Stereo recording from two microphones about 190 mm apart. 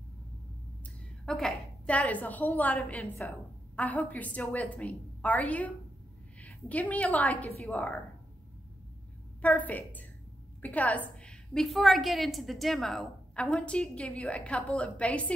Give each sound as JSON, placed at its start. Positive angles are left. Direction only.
{"t": 1.2, "sound": "a woman's voice", "side_deg": 5}
{"t": 9.4, "sound": "a woman's voice", "side_deg": 10}